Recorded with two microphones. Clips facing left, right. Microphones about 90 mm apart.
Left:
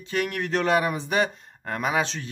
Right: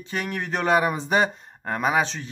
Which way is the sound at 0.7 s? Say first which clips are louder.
Right 5 dB; 30° right (ahead or behind).